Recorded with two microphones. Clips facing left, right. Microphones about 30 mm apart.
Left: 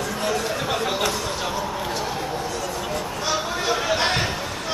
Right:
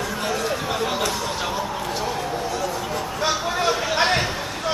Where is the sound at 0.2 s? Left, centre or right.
Centre.